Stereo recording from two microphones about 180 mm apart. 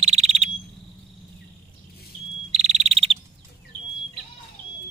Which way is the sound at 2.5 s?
40° right (ahead or behind).